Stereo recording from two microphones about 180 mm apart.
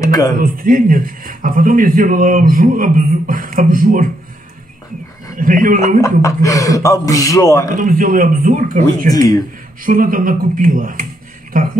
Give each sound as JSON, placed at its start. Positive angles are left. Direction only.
{"t": 0.0, "sound": "speech", "side_deg": 20}
{"t": 0.4, "sound": "a man's voice", "side_deg": -50}
{"t": 5.4, "sound": "a man's voice", "side_deg": -50}
{"t": 5.9, "sound": "speech", "side_deg": 15}
{"t": 7.7, "sound": "a man's voice", "side_deg": -50}
{"t": 9.1, "sound": "speech", "side_deg": 20}
{"t": 9.8, "sound": "a man's voice", "side_deg": -50}